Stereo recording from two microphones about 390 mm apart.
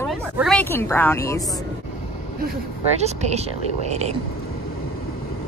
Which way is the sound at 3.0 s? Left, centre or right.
Centre.